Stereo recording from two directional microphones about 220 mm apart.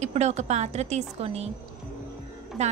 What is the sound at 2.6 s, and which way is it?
Speech, 30° right (ahead or behind).